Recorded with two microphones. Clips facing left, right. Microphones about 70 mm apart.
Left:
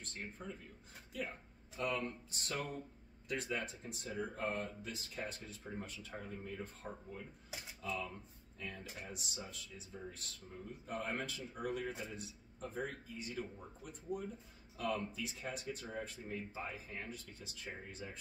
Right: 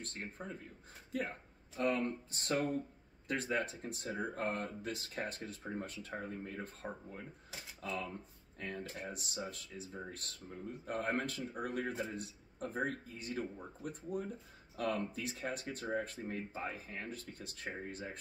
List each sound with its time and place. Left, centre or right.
0.0 s speech: right
1.8 s speech: right